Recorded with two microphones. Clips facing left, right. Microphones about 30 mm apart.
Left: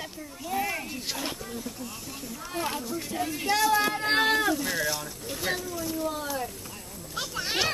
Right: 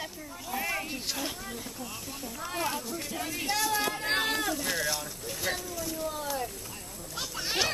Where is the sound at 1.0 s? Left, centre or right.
Centre.